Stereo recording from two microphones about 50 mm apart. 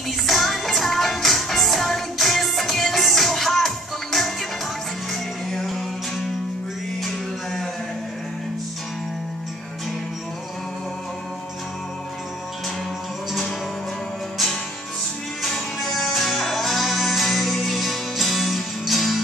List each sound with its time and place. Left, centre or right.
0.3 s music: centre
15.4 s music: centre